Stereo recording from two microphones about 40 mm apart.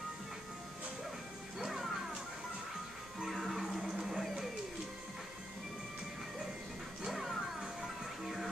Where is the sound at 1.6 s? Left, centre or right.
Centre.